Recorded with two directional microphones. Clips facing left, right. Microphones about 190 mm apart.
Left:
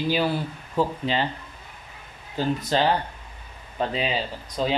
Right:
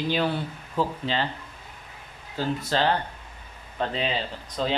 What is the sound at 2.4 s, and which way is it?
Speech, 15° left (ahead or behind).